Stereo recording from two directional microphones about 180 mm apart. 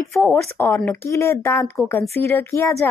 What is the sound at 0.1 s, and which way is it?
Speech, 10° left (ahead or behind).